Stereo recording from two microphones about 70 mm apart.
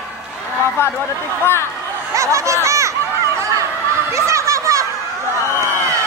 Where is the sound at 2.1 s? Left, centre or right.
Right.